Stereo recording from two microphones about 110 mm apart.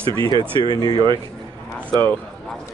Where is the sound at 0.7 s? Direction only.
40° left (ahead or behind).